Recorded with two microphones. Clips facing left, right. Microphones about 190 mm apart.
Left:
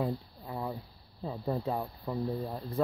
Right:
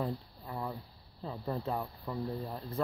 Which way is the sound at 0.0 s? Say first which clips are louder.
Left 3 dB; 15° left (ahead or behind).